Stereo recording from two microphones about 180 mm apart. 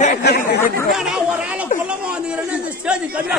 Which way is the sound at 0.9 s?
5° right (ahead or behind).